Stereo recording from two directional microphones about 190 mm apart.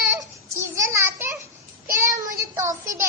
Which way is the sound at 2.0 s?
15° right (ahead or behind).